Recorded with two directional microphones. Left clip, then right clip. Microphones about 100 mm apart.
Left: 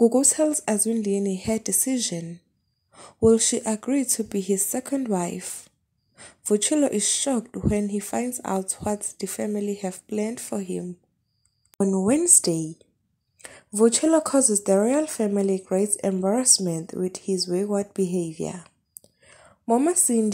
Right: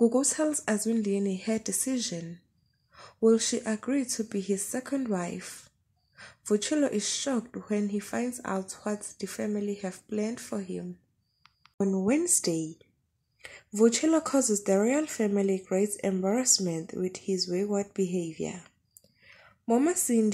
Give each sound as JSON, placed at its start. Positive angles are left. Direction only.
{"t": 0.0, "sound": "speech", "side_deg": 45}
{"t": 11.8, "sound": "speech", "side_deg": 40}
{"t": 18.6, "sound": "a sound", "side_deg": 35}
{"t": 19.6, "sound": "a woman's voice", "side_deg": 25}